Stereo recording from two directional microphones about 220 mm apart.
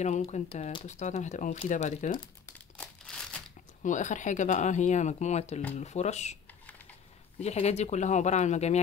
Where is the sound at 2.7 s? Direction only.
5° left (ahead or behind).